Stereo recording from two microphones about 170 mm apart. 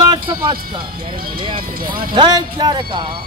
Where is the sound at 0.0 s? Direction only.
25° right (ahead or behind).